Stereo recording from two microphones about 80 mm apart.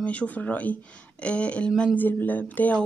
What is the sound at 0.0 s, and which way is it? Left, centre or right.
Speech, centre.